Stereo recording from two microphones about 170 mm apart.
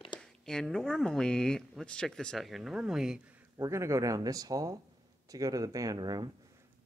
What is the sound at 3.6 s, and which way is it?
Speech, 15° right (ahead or behind).